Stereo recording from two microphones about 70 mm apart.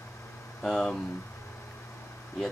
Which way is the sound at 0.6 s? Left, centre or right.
Centre.